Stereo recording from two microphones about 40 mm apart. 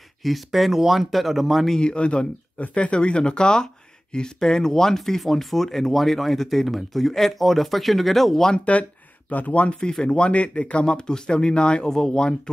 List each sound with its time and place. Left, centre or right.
0.2 s speech: centre
1.8 s speech: left; by 8.4 s centre
8.7 s speech: left
9.8 s speech: left